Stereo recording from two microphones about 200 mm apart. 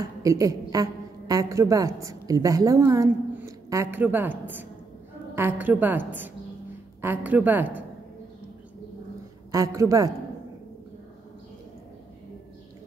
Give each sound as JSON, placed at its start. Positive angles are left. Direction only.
{"t": 0.2, "sound": "a woman's voice", "side_deg": -15}
{"t": 9.5, "sound": "a woman's voice", "side_deg": -15}